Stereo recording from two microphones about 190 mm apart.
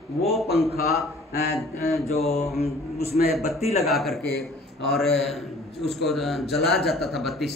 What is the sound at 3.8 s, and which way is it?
A man's voice, centre (ahead or behind).